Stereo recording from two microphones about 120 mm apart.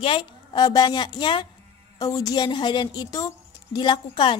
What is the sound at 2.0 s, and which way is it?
A woman's voice, 35° left (ahead or behind).